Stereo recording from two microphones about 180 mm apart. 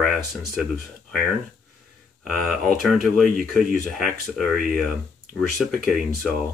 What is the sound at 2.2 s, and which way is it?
Speech, centre (ahead or behind).